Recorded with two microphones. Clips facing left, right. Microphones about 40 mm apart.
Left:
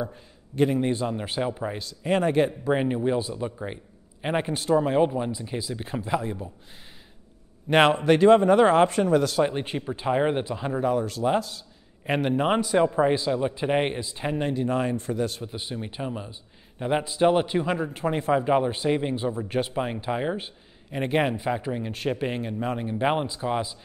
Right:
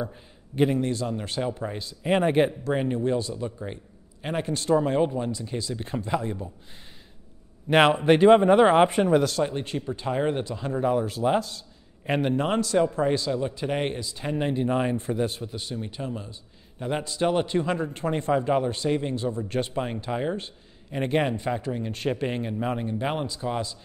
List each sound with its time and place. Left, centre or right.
0.1 s a man's voice: centre
0.7 s a man's voice: left
1.8 s speech: centre
2.6 s a man's voice: centre
4.6 s a man's voice: centre
7.7 s speech: centre
8.0 s speech: centre
9.4 s a man's voice: left
10.8 s speech: centre
12.4 s a man's voice: centre
14.5 s speech: centre
15.4 s a man's voice: centre
21.9 s speech: centre
22.8 s a man's voice: centre